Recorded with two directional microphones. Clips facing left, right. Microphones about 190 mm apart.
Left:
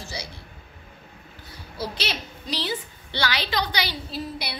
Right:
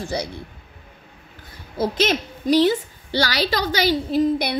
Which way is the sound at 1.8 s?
50° right (ahead or behind).